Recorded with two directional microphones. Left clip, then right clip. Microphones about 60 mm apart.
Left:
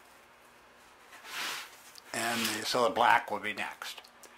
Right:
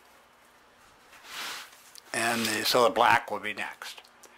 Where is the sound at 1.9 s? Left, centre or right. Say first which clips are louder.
Right 5 dB; right.